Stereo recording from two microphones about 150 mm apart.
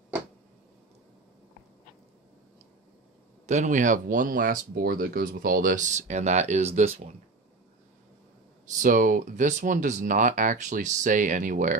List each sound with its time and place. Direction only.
3.4 s speech: 55° right (ahead or behind)
8.8 s speech: 60° right (ahead or behind)